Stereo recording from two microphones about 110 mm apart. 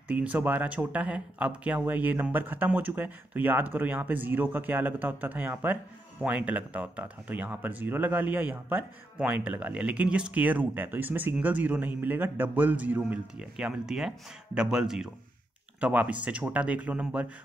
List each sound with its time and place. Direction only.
0.1 s speech: 15° right (ahead or behind)